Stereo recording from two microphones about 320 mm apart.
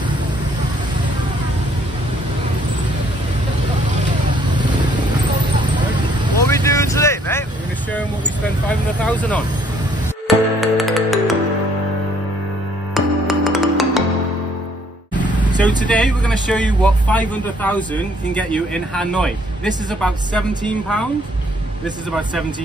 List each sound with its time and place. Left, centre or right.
6.4 s vehicle: centre
8.6 s vehicle: centre
10.2 s music: centre
12.9 s music: centre
15.1 s vehicle: centre
15.8 s speech: centre